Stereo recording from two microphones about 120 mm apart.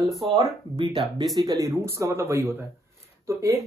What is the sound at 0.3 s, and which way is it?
Speech, 45° right (ahead or behind).